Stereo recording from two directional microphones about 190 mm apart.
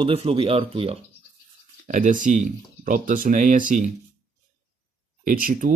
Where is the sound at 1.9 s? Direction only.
45° right (ahead or behind).